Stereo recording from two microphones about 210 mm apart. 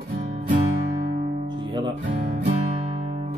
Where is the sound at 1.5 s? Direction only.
20° right (ahead or behind).